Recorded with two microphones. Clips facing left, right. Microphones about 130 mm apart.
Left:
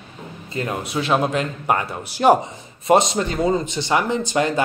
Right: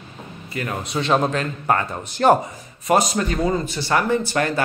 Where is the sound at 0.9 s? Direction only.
5° left (ahead or behind).